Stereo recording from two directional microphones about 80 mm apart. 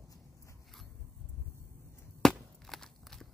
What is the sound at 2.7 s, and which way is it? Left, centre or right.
Walk, centre.